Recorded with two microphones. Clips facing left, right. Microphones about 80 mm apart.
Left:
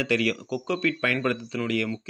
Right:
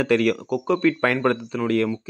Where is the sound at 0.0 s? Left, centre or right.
Right.